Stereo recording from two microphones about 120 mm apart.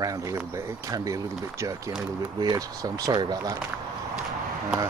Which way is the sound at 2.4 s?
35° right (ahead or behind).